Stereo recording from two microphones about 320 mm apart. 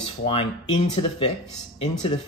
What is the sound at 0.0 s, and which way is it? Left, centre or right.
Speech, centre.